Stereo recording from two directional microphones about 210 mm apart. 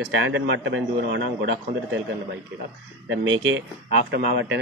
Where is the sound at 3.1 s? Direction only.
65° right (ahead or behind).